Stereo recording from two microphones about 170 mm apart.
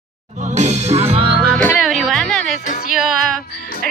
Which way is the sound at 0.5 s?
45° right (ahead or behind).